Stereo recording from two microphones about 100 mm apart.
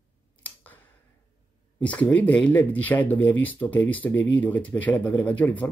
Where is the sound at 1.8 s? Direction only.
15° left (ahead or behind).